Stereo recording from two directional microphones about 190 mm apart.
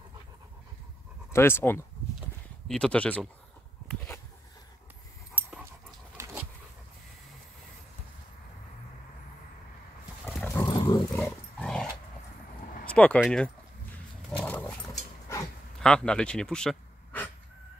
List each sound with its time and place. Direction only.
1.3 s speech: 10° left (ahead or behind)
3.8 s a sound: 5° left (ahead or behind)
5.3 s dog: 10° right (ahead or behind)
10.2 s dog: 10° left (ahead or behind)
10.6 s roaring cats: 20° left (ahead or behind)
11.2 s dog: 5° left (ahead or behind)
12.6 s a sound: 45° left (ahead or behind)
12.9 s speech: 5° left (ahead or behind)
14.4 s dog: 10° left (ahead or behind)
15.8 s speech: 5° left (ahead or behind)